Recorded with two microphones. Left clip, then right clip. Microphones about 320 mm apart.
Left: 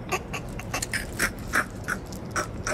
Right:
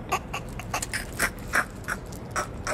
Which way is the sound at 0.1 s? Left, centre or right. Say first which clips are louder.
Right 1 dB; centre.